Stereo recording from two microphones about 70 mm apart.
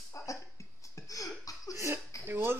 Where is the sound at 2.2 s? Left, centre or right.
Right.